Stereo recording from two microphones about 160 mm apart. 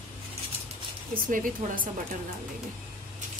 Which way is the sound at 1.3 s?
60° right (ahead or behind).